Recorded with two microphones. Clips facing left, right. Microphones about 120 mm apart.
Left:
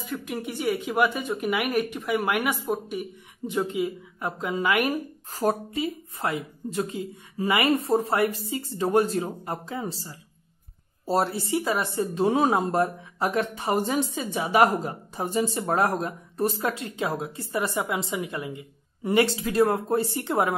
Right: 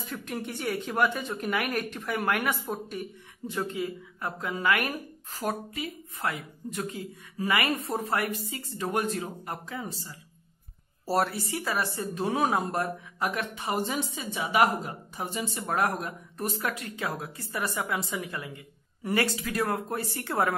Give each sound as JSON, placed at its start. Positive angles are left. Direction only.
{"t": 0.0, "sound": "speech", "side_deg": 5}
{"t": 5.3, "sound": "a woman's voice", "side_deg": 35}